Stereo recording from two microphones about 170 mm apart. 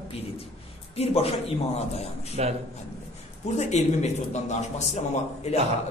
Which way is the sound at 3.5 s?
40° left (ahead or behind).